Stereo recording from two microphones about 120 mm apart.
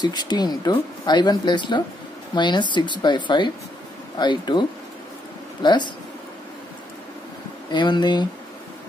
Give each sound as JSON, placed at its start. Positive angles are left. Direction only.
{"t": 0.0, "sound": "speech", "side_deg": 35}
{"t": 7.7, "sound": "speech", "side_deg": 40}